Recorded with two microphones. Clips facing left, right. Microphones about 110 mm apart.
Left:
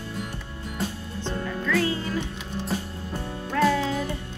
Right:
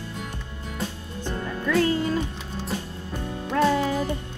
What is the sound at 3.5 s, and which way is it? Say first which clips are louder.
Speech: right 1 dB; 30° right (ahead or behind).